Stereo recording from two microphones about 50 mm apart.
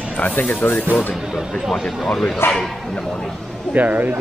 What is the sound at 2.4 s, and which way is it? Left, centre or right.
Speech, left.